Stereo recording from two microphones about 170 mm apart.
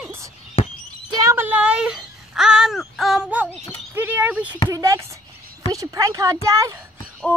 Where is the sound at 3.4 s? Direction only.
10° left (ahead or behind).